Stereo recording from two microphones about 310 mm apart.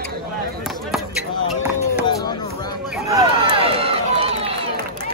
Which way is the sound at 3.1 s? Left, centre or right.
Centre.